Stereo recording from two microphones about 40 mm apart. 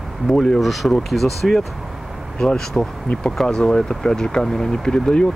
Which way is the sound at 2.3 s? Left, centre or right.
Centre.